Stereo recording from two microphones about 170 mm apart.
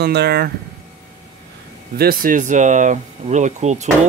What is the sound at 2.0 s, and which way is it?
Speech, 55° right (ahead or behind).